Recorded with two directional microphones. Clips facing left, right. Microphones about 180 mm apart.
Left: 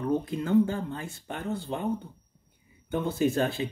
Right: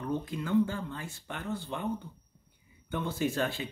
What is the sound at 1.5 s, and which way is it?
Speech, 25° left (ahead or behind).